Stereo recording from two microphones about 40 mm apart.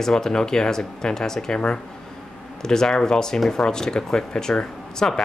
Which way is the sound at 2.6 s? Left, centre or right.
Centre.